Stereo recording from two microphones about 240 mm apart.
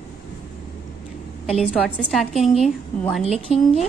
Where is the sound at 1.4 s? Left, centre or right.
Centre.